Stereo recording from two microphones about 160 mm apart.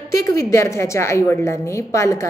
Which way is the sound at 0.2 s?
20° left (ahead or behind).